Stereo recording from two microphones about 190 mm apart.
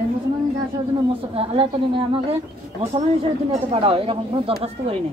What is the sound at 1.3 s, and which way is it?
Speech, 30° right (ahead or behind).